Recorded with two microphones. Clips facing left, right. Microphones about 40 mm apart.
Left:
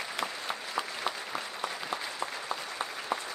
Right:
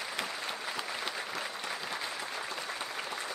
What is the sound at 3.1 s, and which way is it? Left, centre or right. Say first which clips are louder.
Applause: left 5 dB; left.